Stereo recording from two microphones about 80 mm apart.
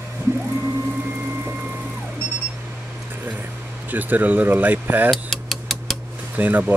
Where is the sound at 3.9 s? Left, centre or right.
Right.